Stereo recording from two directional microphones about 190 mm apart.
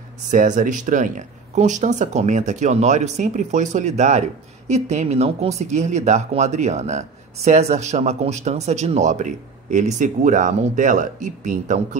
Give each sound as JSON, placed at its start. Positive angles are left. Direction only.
{"t": 0.3, "sound": "speech", "side_deg": -40}